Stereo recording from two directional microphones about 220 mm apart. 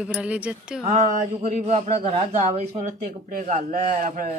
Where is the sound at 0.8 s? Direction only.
30° right (ahead or behind).